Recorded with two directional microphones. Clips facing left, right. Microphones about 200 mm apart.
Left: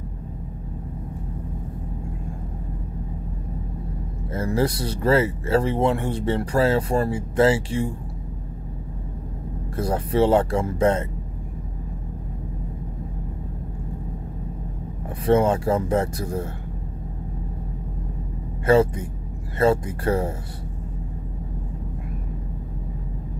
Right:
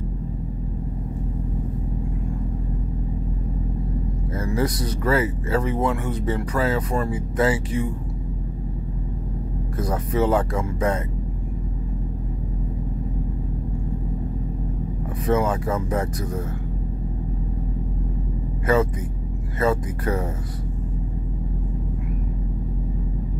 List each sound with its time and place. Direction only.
4.3 s speech: 30° left (ahead or behind)
9.8 s speech: 30° left (ahead or behind)
15.2 s speech: 30° left (ahead or behind)
18.7 s speech: 30° left (ahead or behind)